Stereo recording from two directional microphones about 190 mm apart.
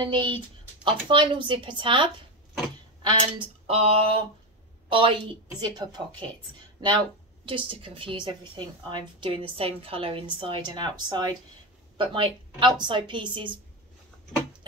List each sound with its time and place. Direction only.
0.0 s a woman's voice: 25° right (ahead or behind)
3.0 s a sound: 25° right (ahead or behind)
4.8 s a woman's voice: 25° right (ahead or behind)
7.4 s a woman's voice: 30° right (ahead or behind)